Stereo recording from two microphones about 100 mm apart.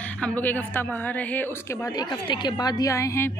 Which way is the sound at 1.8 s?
40° left (ahead or behind).